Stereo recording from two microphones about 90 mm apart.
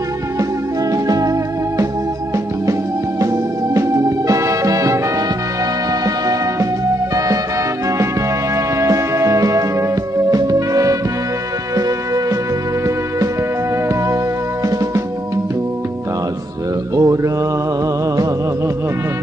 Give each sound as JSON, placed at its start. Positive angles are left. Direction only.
{"t": 0.9, "sound": "music", "side_deg": -40}
{"t": 3.7, "sound": "music", "side_deg": -35}
{"t": 6.0, "sound": "music", "side_deg": -40}
{"t": 8.5, "sound": "music", "side_deg": -35}
{"t": 16.9, "sound": "mantra", "side_deg": -35}